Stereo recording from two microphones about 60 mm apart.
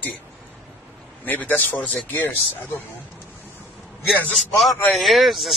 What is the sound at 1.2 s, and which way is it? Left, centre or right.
Speech, left.